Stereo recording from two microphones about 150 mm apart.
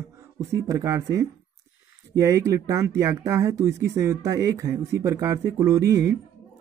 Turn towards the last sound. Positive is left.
turn(degrees=-20)  # may be behind; listen again after turning